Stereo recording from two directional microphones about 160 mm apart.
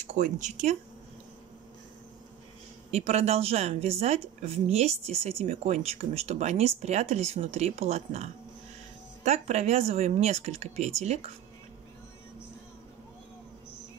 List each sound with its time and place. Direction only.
0.0 s speech: 50° right (ahead or behind)
2.9 s a woman's voice: 40° right (ahead or behind)